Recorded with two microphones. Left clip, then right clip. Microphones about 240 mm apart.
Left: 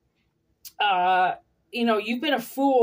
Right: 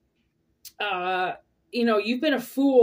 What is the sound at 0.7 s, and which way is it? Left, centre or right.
Speech, centre.